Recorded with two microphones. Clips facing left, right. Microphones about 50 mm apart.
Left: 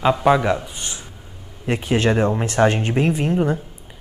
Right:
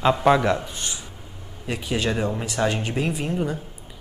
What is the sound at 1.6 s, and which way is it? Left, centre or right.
A man's voice, left.